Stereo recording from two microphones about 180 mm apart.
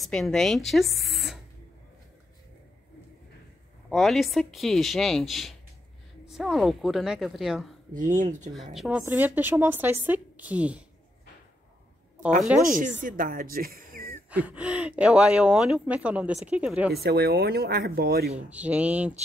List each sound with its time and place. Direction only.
0.0 s speech: centre (ahead or behind)
3.9 s a woman's voice: centre (ahead or behind)
7.9 s speech: 45° right (ahead or behind)
8.7 s a woman's voice: 5° right (ahead or behind)
12.4 s a woman's voice: centre (ahead or behind)
13.0 s speech: 50° right (ahead or behind)
14.3 s a woman's voice: 5° right (ahead or behind)
16.9 s speech: 60° right (ahead or behind)
18.2 s a woman's voice: 5° right (ahead or behind)